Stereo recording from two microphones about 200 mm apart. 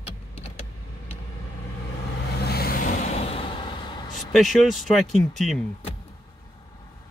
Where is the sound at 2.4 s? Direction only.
50° left (ahead or behind); by 4.1 s 25° left (ahead or behind).